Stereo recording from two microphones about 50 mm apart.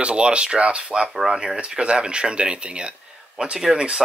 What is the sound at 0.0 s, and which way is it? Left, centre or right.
Speech, right.